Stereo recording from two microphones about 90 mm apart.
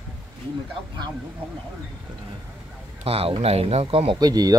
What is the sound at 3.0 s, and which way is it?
Speech, 90° right.